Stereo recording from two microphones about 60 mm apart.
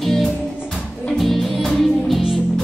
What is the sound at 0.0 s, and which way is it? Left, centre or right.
Music, centre.